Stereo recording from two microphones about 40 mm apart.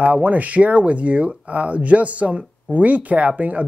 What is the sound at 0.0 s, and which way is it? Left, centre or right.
Speech, right.